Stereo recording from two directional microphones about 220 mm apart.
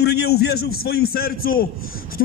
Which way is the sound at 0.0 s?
45° left (ahead or behind).